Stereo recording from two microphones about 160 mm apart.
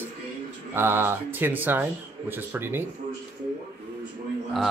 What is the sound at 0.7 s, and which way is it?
Speech, 15° right (ahead or behind).